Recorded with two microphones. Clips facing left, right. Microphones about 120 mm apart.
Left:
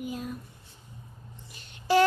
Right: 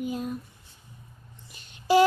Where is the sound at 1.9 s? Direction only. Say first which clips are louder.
Right 3 dB; 10° right (ahead or behind).